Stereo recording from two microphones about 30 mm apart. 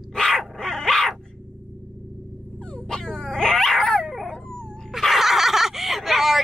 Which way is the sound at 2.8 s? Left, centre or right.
Left.